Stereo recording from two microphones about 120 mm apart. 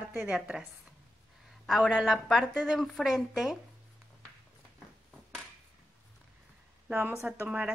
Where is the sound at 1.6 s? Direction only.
Centre (ahead or behind).